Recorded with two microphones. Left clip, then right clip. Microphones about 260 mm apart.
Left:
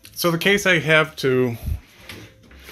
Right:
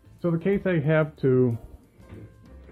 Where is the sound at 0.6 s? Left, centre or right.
Centre.